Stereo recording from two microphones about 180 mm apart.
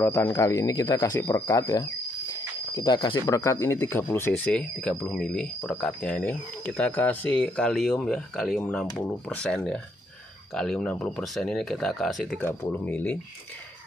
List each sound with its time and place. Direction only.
0.0 s speech: 10° left (ahead or behind)